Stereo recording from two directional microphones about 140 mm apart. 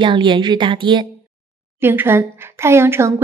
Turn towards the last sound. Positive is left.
turn(degrees=-20)  # may be behind; listen again after turning